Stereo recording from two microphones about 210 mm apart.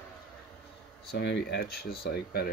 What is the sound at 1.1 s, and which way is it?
Speech, 55° left (ahead or behind).